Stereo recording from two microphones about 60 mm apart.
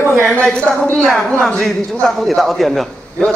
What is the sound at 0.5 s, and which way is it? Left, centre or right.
A man's voice, centre.